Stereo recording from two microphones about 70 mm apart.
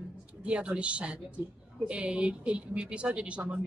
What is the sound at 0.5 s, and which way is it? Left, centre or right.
A woman's voice, centre.